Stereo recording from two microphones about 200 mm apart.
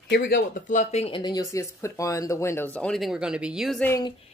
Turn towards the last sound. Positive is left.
turn(degrees=15)  # may be behind; listen again after turning